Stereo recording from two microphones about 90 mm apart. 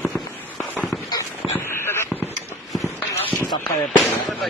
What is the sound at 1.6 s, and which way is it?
Fireworks, 25° left (ahead or behind).